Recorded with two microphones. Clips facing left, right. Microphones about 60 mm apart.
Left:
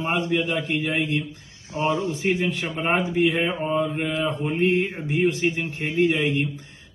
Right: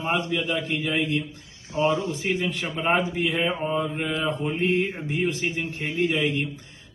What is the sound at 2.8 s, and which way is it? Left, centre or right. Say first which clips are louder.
Mantra: left 2 dB; left.